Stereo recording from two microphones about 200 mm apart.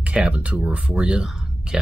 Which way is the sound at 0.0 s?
5° right (ahead or behind).